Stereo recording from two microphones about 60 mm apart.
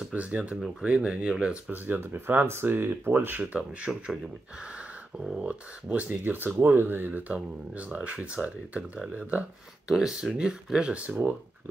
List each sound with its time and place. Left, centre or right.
0.1 s speech: right
1.7 s speech: right
9.8 s speech: centre; by 11.7 s right